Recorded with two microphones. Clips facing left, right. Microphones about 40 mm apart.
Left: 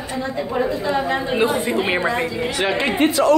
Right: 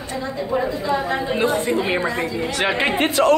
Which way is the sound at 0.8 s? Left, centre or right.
Left.